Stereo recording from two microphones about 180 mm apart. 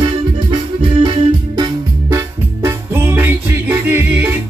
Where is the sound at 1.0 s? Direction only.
30° right (ahead or behind).